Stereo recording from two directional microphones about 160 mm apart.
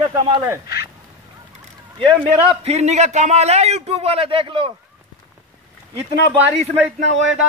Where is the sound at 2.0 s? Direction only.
35° right (ahead or behind).